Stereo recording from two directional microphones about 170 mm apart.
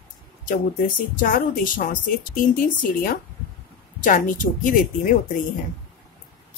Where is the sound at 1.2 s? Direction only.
55° left (ahead or behind).